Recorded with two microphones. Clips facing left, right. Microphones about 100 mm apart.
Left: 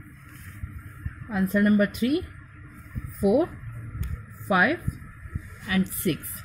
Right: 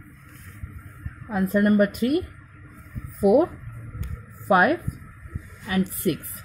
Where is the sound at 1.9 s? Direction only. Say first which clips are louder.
Right 2 dB; 45° right (ahead or behind).